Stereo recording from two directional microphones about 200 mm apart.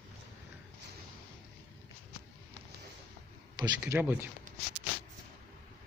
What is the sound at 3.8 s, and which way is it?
Speech, 10° right (ahead or behind).